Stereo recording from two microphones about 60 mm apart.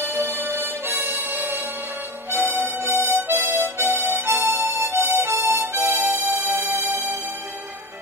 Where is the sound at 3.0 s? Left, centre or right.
Right.